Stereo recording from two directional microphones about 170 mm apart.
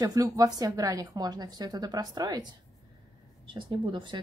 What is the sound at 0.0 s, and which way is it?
Speech, 20° right (ahead or behind).